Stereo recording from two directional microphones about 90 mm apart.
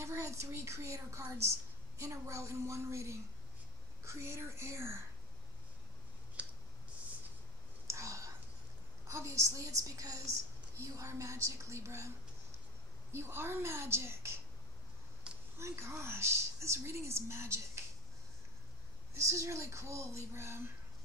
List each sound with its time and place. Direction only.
0.0 s a woman's voice: 30° right (ahead or behind)
6.4 s clicking: 15° right (ahead or behind)
7.8 s whispering: 35° right (ahead or behind)
9.0 s a woman's voice: 35° right (ahead or behind)
13.1 s a woman's voice: 30° right (ahead or behind)
15.6 s a woman's voice: 30° right (ahead or behind)
19.1 s a woman's voice: 35° right (ahead or behind)